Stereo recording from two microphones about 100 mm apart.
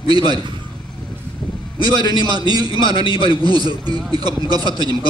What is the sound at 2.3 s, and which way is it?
Speech, 45° right (ahead or behind).